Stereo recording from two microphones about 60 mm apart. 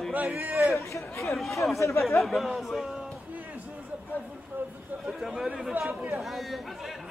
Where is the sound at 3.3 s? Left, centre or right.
Right.